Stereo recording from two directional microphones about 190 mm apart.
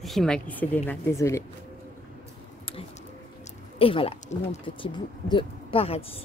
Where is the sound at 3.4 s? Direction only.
30° left (ahead or behind).